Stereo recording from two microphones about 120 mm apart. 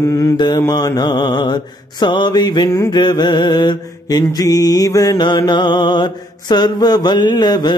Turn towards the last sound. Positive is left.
turn(degrees=35)  # may be behind; listen again after turning